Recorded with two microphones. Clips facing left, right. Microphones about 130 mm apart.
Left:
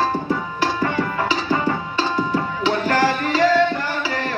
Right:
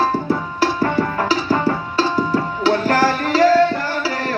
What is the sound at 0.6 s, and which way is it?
Music, 40° right (ahead or behind).